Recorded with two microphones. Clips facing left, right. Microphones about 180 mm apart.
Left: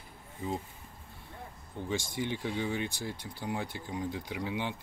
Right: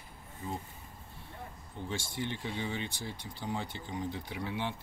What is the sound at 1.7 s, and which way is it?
Speech, 15° left (ahead or behind).